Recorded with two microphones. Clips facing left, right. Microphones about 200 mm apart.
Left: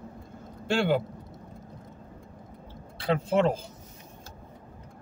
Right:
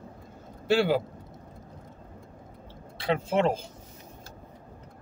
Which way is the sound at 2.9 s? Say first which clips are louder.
Left 1 dB; centre (ahead or behind).